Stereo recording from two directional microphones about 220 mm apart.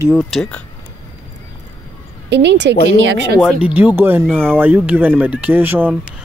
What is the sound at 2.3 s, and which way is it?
Speech, 50° right (ahead or behind).